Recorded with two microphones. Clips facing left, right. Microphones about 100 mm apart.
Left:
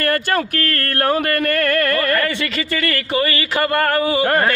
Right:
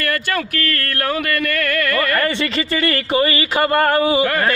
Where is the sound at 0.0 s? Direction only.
35° left (ahead or behind).